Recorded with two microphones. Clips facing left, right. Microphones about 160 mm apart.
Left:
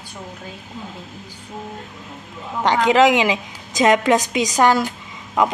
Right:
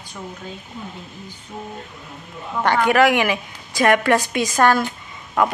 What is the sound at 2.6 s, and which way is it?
A woman's voice, 15° left (ahead or behind).